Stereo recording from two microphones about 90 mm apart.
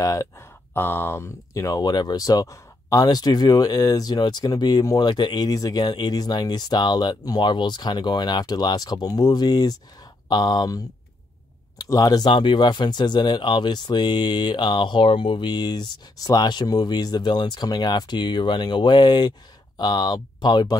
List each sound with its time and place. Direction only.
0.0 s speech: 35° left (ahead or behind)
1.5 s speech: 40° left (ahead or behind)
11.8 s speech: 45° left (ahead or behind)
12.3 s speech: 65° left (ahead or behind)